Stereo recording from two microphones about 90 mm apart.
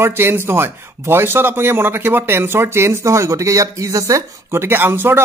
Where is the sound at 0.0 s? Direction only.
25° right (ahead or behind).